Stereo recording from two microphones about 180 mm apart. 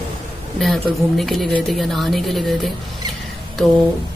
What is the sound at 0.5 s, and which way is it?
Speech, centre (ahead or behind).